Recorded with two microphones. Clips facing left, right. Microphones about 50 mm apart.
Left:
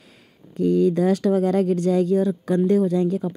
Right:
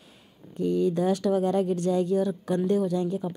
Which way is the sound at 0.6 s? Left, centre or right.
Left.